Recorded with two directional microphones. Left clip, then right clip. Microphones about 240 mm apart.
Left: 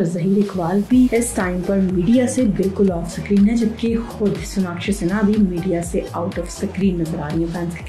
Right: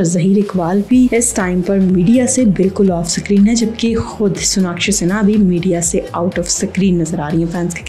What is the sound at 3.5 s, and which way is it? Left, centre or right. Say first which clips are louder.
A woman's voice: right 4 dB; right.